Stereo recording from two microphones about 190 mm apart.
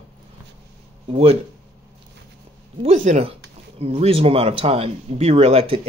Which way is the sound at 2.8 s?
35° right (ahead or behind).